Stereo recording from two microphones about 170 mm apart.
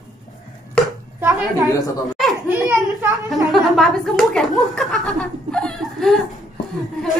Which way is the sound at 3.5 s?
Centre (ahead or behind).